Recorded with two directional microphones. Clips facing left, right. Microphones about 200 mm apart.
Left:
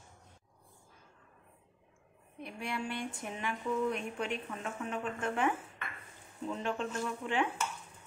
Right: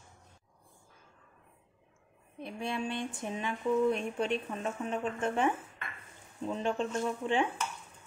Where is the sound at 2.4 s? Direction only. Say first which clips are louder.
Right 3 dB; 25° right (ahead or behind).